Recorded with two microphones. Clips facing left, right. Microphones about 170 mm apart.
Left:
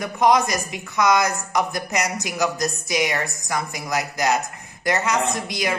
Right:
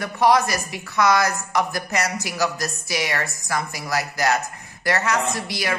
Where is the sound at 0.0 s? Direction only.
20° left (ahead or behind).